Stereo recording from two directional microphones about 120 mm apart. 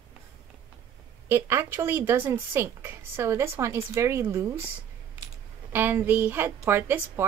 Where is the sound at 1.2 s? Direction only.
20° right (ahead or behind).